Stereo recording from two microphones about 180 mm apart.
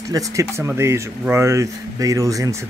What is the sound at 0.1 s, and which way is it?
Speech, 20° right (ahead or behind).